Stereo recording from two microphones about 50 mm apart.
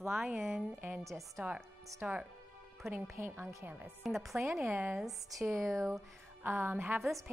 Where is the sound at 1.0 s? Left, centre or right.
Right.